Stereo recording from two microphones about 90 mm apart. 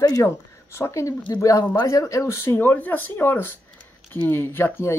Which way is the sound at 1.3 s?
45° left (ahead or behind).